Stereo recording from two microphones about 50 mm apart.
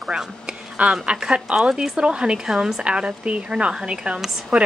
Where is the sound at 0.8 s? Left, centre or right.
Right.